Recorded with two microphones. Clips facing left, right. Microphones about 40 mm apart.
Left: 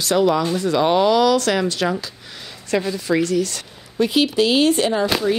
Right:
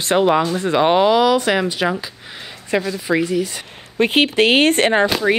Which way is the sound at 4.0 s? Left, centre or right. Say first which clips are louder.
Right 2 dB; right.